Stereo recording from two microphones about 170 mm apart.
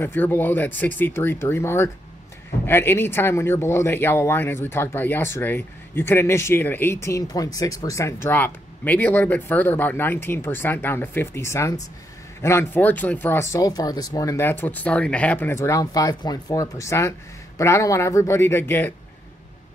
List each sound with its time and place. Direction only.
0.0 s speech: 10° left (ahead or behind)